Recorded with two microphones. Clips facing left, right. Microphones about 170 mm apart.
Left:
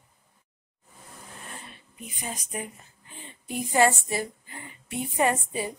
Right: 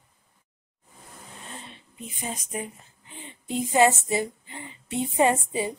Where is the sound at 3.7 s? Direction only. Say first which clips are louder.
Right 2 dB; 20° right (ahead or behind).